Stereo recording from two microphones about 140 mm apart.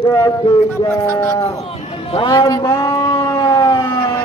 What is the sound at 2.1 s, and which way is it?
Siren, 30° left (ahead or behind).